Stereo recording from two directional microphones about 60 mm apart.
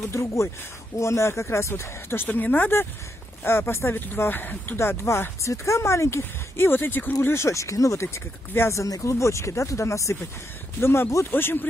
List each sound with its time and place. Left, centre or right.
0.0 s speech: left
2.2 s speech: left
4.7 s speech: left
7.2 s speech: left
8.7 s speech: left
9.1 s speech: left
10.8 s speech: left